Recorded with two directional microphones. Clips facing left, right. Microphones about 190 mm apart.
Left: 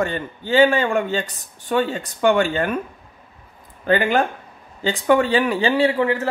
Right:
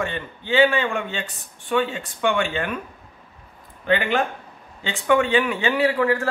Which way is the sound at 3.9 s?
40° left (ahead or behind).